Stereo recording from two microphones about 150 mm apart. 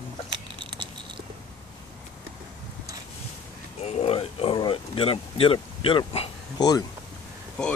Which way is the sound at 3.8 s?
45° left (ahead or behind).